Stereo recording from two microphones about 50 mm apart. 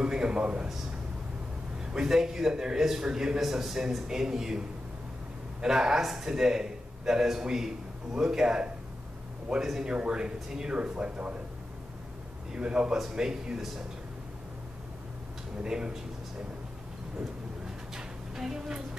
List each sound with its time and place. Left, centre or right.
0.0 s a sound: centre
1.9 s a man's voice: centre
12.5 s a man's voice: centre
15.6 s a man's voice: centre
17.9 s music: centre